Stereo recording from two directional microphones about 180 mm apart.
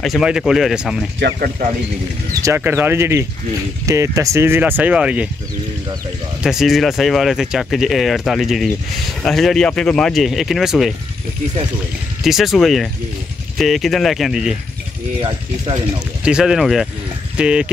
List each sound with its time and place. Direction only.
0.0 s speech: centre (ahead or behind)
2.4 s speech: 15° right (ahead or behind)
6.4 s speech: centre (ahead or behind)
12.2 s speech: centre (ahead or behind)
15.2 s mechanisms: 25° right (ahead or behind)
16.3 s speech: 5° right (ahead or behind)